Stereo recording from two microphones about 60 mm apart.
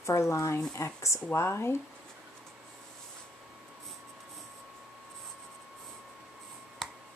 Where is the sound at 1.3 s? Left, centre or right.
Left.